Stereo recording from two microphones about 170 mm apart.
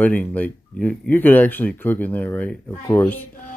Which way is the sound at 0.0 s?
10° left (ahead or behind).